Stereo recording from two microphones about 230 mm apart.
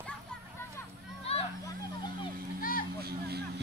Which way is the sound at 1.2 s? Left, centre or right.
Left.